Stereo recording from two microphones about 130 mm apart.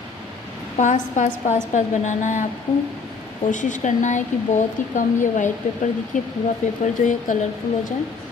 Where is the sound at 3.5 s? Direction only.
75° left (ahead or behind).